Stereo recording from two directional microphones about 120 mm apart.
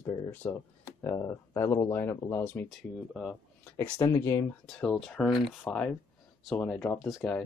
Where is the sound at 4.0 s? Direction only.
25° left (ahead or behind).